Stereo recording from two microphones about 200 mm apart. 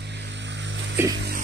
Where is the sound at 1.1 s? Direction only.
55° right (ahead or behind).